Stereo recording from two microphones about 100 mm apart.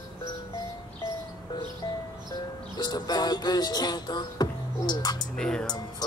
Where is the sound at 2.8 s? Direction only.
45° left (ahead or behind).